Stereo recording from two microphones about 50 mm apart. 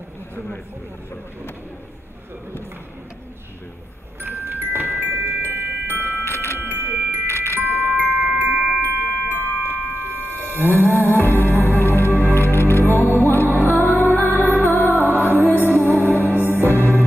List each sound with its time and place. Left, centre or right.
4.5 s music: right
5.2 s glockenspiel: right
6.2 s music: left
6.6 s music: right
7.2 s music: left
7.6 s glockenspiel: right
9.3 s a sound: right
10.7 s music: left
14.9 s music: right
16.0 s music: left